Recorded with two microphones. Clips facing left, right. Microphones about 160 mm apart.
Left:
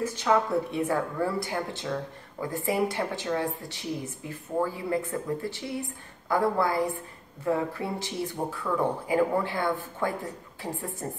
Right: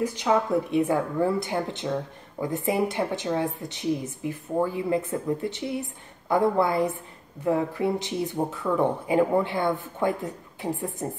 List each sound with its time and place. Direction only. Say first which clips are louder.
0.0 s speech: right 1 dB; 15° right (ahead or behind)